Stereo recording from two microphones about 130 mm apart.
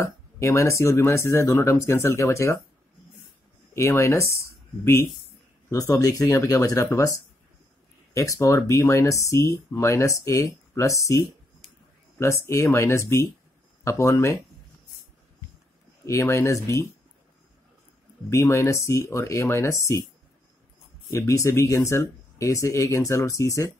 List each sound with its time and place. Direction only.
0.0 s speech: 25° left (ahead or behind)
3.7 s speech: 20° left (ahead or behind)
16.1 s speech: 25° left (ahead or behind)
18.3 s speech: 20° left (ahead or behind)
21.1 s speech: 20° left (ahead or behind)